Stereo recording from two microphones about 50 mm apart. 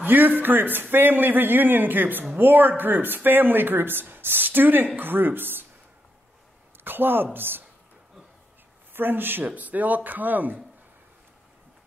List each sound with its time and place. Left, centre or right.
0.0 s a man's voice: right
6.8 s a woman's voice: right
8.9 s a man's voice: right